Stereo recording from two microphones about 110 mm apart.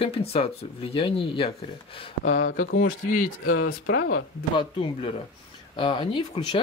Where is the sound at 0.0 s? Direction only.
65° left (ahead or behind).